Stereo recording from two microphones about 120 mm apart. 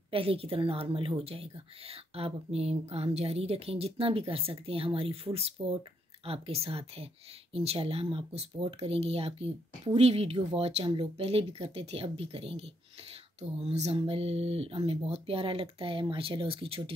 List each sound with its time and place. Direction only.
0.1 s speech: 50° right (ahead or behind)